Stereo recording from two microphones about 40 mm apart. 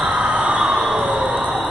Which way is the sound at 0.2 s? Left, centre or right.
Right.